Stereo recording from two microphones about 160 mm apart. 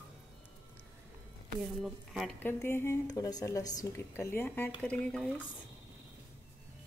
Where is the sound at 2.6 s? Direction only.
15° left (ahead or behind).